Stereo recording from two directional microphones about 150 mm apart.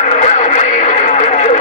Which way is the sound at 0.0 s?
50° left (ahead or behind).